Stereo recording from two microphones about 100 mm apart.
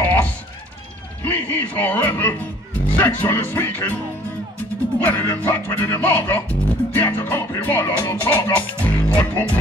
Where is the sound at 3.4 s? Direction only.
20° left (ahead or behind).